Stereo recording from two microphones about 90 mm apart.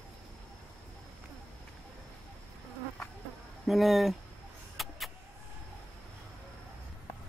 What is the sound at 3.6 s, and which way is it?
Speech, centre (ahead or behind).